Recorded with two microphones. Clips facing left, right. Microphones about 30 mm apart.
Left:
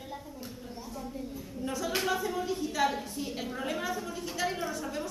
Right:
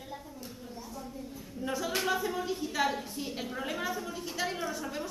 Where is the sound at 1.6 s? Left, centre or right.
Centre.